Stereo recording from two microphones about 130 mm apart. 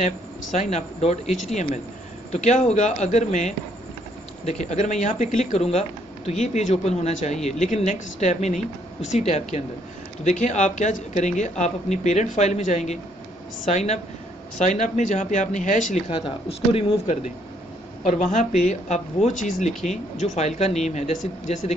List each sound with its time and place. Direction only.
0.0 s speech: 65° left (ahead or behind)
16.1 s speech: 45° left (ahead or behind)
18.0 s speech: 70° left (ahead or behind)